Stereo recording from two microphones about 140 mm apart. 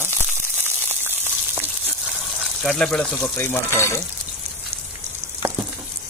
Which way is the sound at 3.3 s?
15° left (ahead or behind).